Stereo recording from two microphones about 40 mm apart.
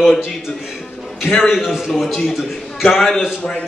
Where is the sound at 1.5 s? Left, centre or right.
Centre.